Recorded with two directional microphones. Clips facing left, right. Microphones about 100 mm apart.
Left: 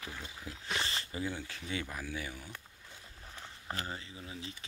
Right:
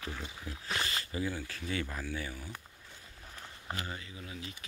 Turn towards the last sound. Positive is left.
turn(degrees=30)  # may be behind; listen again after turning